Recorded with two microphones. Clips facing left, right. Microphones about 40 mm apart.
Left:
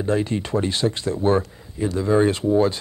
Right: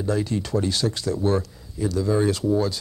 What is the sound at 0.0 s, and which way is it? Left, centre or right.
Speech, left.